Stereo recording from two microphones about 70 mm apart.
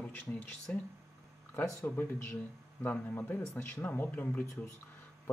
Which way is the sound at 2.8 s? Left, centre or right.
Left.